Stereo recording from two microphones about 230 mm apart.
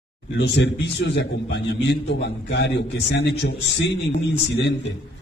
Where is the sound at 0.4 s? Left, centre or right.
Left.